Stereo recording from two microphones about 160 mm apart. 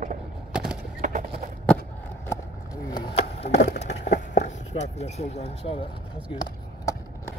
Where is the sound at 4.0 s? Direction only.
50° left (ahead or behind).